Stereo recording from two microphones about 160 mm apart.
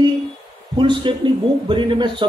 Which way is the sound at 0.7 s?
30° right (ahead or behind).